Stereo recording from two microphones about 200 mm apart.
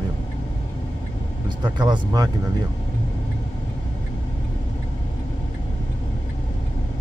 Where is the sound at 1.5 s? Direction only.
20° right (ahead or behind).